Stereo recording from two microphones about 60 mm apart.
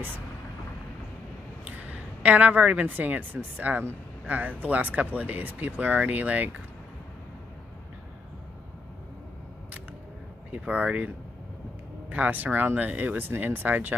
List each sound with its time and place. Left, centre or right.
1.7 s a woman's voice: right
10.5 s speech: right
12.1 s speech: right